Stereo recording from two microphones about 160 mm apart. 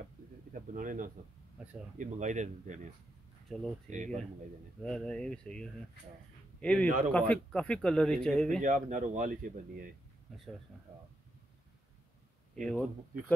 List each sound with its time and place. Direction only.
0.5 s bird: 60° right (ahead or behind)
2.0 s speech: 50° right (ahead or behind)
3.5 s speech: centre (ahead or behind)
3.9 s speech: 50° right (ahead or behind)
4.8 s a man's voice: 5° left (ahead or behind)
8.5 s speech: 50° right (ahead or behind)
10.3 s speech: centre (ahead or behind)
12.5 s speech: 5° left (ahead or behind)